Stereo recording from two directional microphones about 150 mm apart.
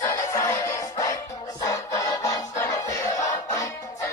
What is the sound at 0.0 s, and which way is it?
Music, 20° left (ahead or behind).